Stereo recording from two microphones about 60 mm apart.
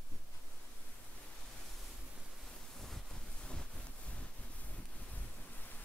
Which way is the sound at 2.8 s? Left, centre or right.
Centre.